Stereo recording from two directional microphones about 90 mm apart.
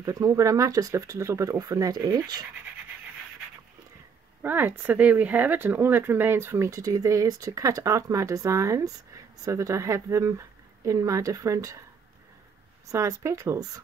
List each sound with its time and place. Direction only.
0.0 s speech: 40° right (ahead or behind)
4.4 s speech: 20° right (ahead or behind)
12.8 s speech: 35° right (ahead or behind)